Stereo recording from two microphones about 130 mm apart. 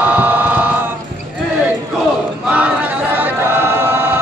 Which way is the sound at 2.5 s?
10° right (ahead or behind).